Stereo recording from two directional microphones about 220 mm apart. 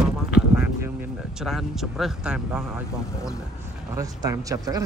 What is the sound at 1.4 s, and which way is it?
Speech, centre (ahead or behind).